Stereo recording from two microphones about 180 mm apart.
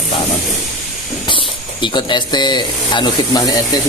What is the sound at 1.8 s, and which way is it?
Speech, 25° left (ahead or behind).